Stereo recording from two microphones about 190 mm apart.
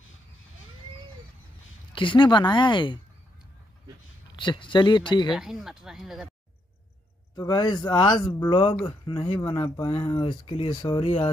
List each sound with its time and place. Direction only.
2.0 s speech: 25° left (ahead or behind)
4.4 s speech: 25° left (ahead or behind)
5.3 s speech: centre (ahead or behind)
7.3 s speech: 20° left (ahead or behind)